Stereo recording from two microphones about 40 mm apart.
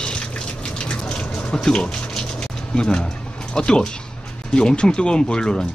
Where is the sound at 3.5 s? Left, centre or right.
Left.